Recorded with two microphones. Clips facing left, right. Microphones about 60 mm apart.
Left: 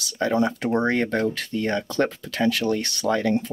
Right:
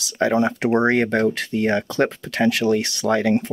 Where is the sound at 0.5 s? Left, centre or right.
Right.